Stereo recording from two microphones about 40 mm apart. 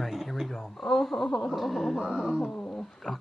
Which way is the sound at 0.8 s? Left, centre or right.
Centre.